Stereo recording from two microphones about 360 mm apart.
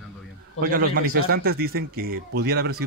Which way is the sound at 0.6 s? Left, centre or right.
Right.